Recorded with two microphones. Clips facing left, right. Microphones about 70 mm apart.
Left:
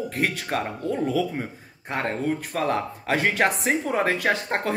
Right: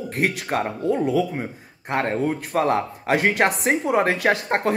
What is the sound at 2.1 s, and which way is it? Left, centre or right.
Speech, right.